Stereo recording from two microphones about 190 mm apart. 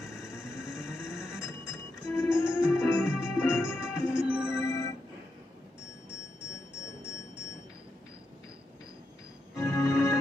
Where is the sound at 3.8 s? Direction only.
5° right (ahead or behind).